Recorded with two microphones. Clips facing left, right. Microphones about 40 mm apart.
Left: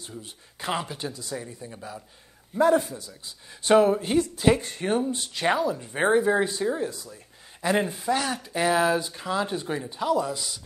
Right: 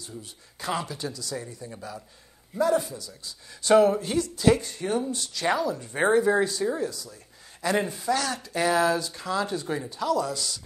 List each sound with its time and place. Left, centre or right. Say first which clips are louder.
0.2 s speech: left 1 dB; left
1.7 s a man's voice: even; centre
2.5 s speech: left 3 dB; left
7.6 s speech: left 1 dB; centre